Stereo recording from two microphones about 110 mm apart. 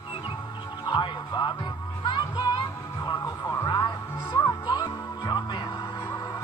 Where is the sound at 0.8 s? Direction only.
45° left (ahead or behind).